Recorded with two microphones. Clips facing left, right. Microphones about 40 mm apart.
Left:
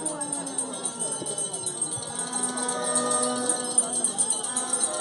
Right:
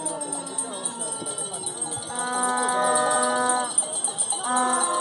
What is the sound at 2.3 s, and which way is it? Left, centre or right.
Music, right.